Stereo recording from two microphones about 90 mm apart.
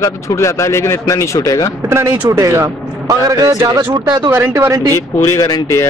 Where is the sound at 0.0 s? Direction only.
40° left (ahead or behind).